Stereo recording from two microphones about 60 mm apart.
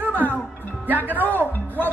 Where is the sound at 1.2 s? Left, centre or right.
Left.